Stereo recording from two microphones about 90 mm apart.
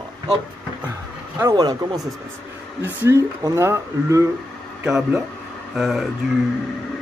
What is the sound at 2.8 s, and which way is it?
Speech, 30° right (ahead or behind).